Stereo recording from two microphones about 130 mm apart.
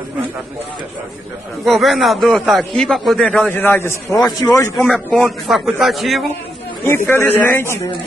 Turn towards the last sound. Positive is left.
turn(degrees=15)  # may be behind; listen again after turning